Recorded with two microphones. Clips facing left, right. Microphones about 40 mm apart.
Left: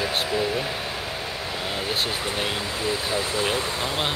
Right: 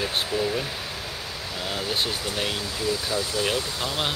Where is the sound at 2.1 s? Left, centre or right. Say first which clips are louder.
Left 1 dB; left.